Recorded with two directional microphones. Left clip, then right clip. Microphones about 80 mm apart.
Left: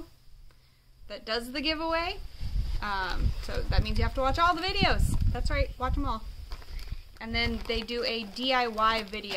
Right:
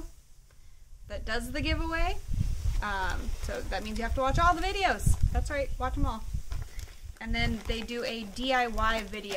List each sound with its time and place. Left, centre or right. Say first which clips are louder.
1.0 s speech: left 2 dB; left